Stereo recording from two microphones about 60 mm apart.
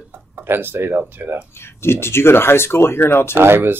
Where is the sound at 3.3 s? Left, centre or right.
Right.